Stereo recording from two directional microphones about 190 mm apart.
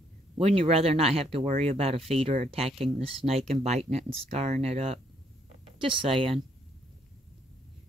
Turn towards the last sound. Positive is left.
turn(degrees=-30)  # may be behind; listen again after turning